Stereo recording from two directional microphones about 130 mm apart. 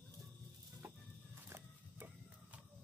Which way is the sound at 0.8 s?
15° right (ahead or behind).